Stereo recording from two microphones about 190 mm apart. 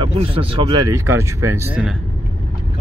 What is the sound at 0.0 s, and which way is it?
Speech, 30° right (ahead or behind).